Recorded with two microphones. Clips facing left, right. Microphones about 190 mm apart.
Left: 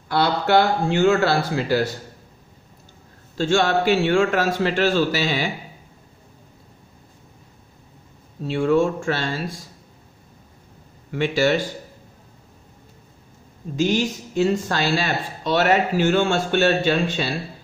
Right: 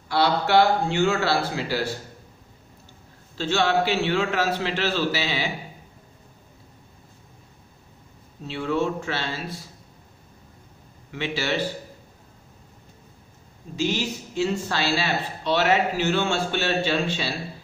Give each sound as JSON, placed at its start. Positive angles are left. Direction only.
{"t": 0.1, "sound": "speech", "side_deg": 50}
{"t": 3.3, "sound": "speech", "side_deg": 45}
{"t": 8.5, "sound": "speech", "side_deg": 45}
{"t": 11.1, "sound": "speech", "side_deg": 45}
{"t": 13.7, "sound": "speech", "side_deg": 50}